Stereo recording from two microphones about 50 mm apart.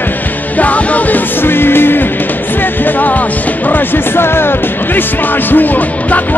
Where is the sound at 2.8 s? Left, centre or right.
Left.